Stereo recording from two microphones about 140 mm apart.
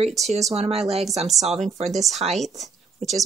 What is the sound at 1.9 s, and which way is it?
Speech, centre (ahead or behind).